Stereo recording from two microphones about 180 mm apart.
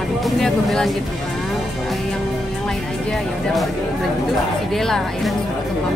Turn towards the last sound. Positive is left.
turn(degrees=0)  # may be behind; listen again after turning